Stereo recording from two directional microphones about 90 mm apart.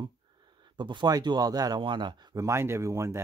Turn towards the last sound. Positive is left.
turn(degrees=-30)  # may be behind; listen again after turning